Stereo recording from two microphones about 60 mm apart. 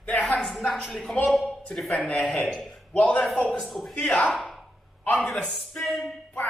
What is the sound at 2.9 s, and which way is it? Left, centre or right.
Speech, left.